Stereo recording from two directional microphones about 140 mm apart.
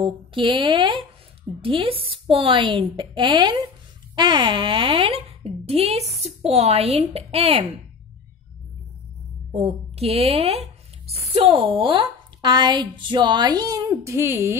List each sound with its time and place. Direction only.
0.0 s speech: 35° right (ahead or behind)
9.5 s speech: 50° right (ahead or behind); by 14.6 s 20° right (ahead or behind)